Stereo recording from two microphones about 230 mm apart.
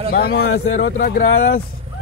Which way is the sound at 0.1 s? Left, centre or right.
Left.